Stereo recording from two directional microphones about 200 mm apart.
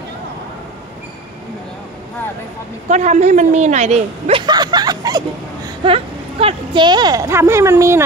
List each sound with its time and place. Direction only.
2.9 s a woman's voice: 35° right (ahead or behind); by 8.0 s 15° right (ahead or behind)